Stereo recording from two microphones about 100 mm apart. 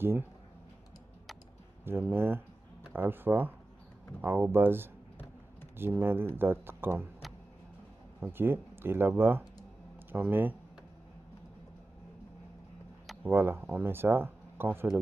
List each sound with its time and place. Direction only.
1.9 s speech: 20° right (ahead or behind)
8.2 s speech: 20° right (ahead or behind)
13.2 s speech: 20° right (ahead or behind)